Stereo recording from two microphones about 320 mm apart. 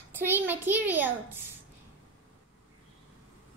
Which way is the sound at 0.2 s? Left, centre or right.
Centre.